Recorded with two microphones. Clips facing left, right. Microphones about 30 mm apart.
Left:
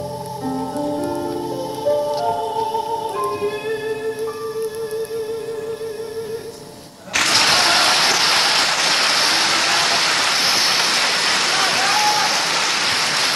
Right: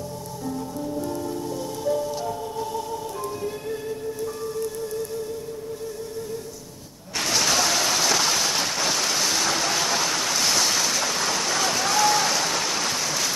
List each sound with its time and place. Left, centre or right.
0.7 s music: left
1.9 s music: left
7.2 s applause: left
10.4 s applause: left